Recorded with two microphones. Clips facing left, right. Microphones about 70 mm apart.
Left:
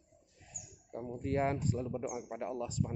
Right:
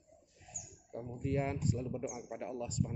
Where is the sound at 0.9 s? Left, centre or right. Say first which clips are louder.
Left 2 dB; left.